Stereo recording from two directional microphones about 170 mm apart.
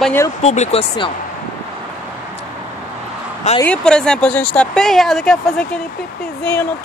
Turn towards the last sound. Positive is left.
turn(degrees=10)  # may be behind; listen again after turning